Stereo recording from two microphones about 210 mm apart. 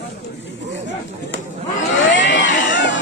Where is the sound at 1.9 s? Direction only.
60° left (ahead or behind).